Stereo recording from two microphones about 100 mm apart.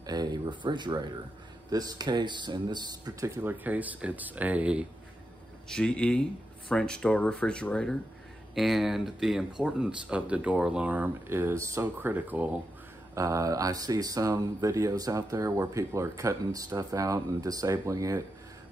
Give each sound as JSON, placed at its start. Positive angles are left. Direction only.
{"t": 0.0, "sound": "speech", "side_deg": -45}
{"t": 3.4, "sound": "speech", "side_deg": -15}
{"t": 5.7, "sound": "speech", "side_deg": 10}
{"t": 8.5, "sound": "speech", "side_deg": 0}
{"t": 13.1, "sound": "speech", "side_deg": -35}